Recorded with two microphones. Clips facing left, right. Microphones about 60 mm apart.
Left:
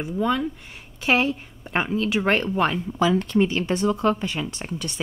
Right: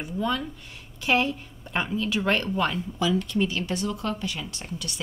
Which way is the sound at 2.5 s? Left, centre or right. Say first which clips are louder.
Left 4 dB; left.